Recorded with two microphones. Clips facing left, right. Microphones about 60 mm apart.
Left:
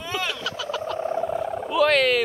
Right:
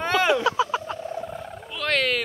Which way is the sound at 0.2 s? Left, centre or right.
Right.